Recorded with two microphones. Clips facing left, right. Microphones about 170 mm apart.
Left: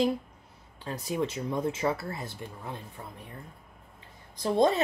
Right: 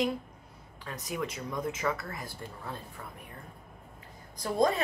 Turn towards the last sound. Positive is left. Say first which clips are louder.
# left 3 dB
turn(degrees=25)  # may be behind; listen again after turning